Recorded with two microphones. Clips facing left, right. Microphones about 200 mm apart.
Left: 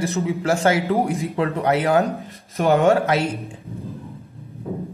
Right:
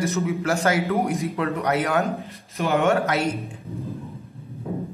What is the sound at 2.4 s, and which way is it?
Speech, 50° left (ahead or behind).